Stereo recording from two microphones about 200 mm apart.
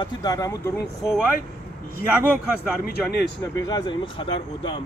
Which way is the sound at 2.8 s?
55° left (ahead or behind).